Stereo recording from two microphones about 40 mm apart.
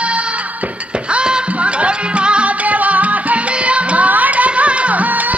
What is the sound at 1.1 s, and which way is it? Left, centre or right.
Music, right.